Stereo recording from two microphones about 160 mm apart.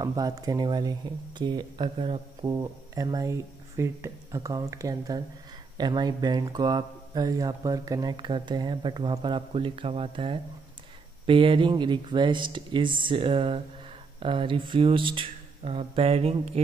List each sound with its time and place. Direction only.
0.0 s speech: 25° right (ahead or behind); by 16.6 s 40° right (ahead or behind)